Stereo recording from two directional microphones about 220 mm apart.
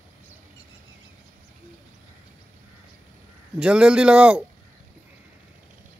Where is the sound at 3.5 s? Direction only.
5° right (ahead or behind).